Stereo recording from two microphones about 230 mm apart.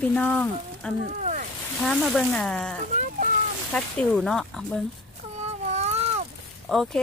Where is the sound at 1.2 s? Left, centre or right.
Right.